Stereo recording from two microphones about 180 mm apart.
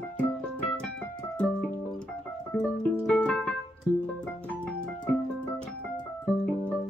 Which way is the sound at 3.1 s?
5° left (ahead or behind).